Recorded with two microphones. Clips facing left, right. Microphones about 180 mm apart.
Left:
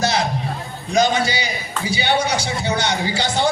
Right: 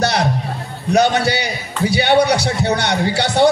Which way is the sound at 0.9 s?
65° right (ahead or behind).